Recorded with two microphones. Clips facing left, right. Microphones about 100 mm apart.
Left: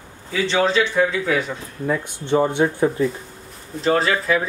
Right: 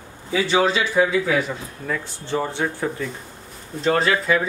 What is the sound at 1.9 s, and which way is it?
Speech, 20° left (ahead or behind).